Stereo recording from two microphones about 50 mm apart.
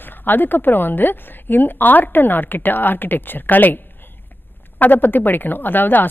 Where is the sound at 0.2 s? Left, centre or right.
Left.